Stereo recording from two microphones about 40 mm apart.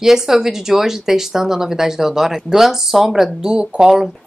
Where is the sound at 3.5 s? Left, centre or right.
Right.